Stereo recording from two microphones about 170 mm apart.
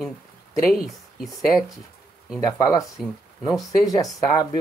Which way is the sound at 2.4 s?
20° left (ahead or behind).